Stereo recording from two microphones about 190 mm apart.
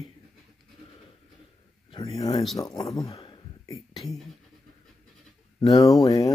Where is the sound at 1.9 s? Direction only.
25° left (ahead or behind).